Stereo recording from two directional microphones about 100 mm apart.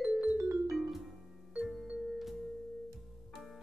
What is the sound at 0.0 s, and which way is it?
Music, 10° right (ahead or behind).